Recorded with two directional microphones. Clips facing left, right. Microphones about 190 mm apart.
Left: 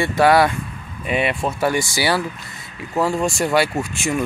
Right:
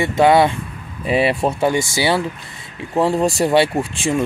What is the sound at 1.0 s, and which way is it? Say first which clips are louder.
Speech: right 4 dB; 30° right (ahead or behind).